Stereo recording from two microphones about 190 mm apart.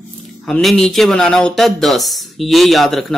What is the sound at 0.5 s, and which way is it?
Speech, centre (ahead or behind).